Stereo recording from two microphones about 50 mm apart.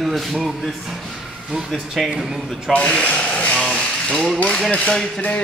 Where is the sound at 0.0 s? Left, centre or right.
Centre.